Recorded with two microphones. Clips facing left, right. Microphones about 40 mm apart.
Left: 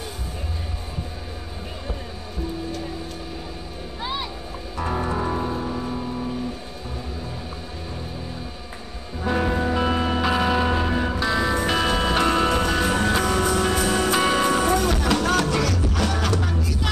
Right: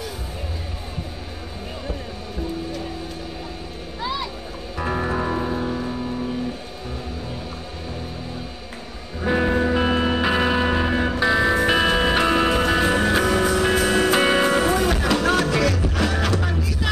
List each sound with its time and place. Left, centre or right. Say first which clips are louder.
4.0 s a sound: right 2 dB; left
4.7 s music: right 1 dB; centre
9.2 s music: right 3 dB; centre